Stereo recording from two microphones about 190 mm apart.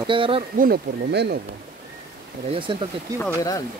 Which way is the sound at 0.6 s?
55° right (ahead or behind).